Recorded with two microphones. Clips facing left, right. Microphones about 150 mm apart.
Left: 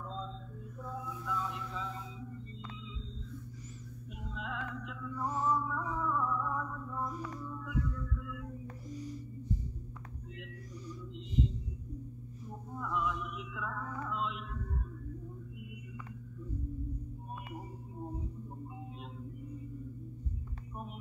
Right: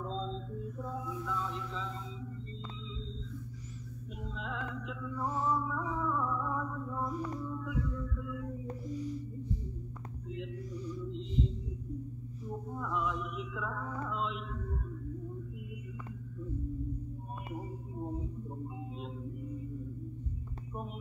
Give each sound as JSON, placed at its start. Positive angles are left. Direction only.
{"t": 0.0, "sound": "mantra", "side_deg": -30}
{"t": 1.2, "sound": "a sound", "side_deg": 5}
{"t": 4.2, "sound": "music", "side_deg": 5}
{"t": 8.9, "sound": "music", "side_deg": 45}
{"t": 12.7, "sound": "music", "side_deg": 0}